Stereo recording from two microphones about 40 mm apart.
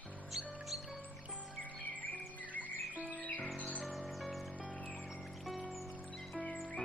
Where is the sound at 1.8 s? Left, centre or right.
Left.